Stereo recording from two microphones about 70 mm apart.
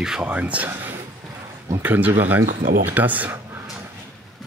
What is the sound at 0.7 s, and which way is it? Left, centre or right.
Speech, right.